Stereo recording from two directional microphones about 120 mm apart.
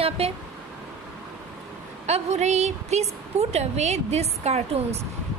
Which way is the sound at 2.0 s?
65° right (ahead or behind).